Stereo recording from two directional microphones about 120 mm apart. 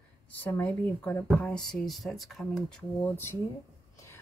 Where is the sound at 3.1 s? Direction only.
20° left (ahead or behind).